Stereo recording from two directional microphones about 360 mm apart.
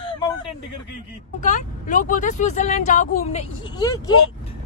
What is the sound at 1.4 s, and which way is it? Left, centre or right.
Speech, left.